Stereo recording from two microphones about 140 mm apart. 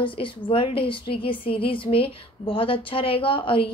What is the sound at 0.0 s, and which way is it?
A woman's voice, 40° left (ahead or behind).